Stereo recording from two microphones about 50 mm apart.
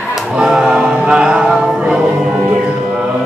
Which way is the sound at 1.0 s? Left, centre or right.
Centre.